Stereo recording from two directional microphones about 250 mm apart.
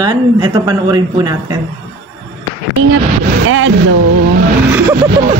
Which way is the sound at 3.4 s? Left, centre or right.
Right.